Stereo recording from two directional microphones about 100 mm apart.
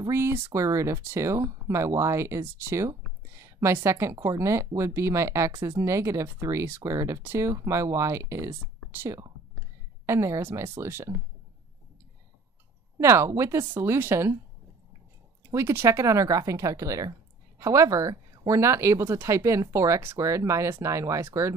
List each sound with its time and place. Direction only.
0.1 s speech: 25° right (ahead or behind)
13.0 s speech: 30° right (ahead or behind)
15.5 s speech: 25° right (ahead or behind)